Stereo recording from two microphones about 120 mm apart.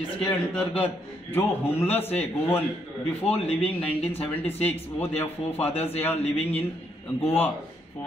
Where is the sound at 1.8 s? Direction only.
15° left (ahead or behind).